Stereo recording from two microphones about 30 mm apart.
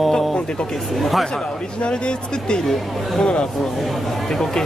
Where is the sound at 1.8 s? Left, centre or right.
Left.